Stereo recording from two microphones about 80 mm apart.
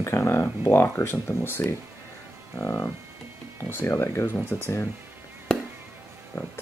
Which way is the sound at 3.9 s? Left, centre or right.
Left.